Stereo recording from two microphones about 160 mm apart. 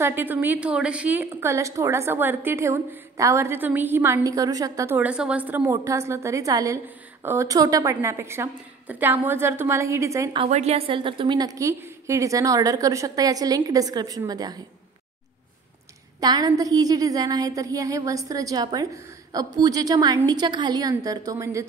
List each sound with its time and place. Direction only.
0.0 s a woman's voice: 15° right (ahead or behind)
4.9 s a woman's voice: 5° right (ahead or behind)
10.5 s a woman's voice: 40° right (ahead or behind); by 14.6 s 25° right (ahead or behind)
16.2 s a woman's voice: 25° right (ahead or behind)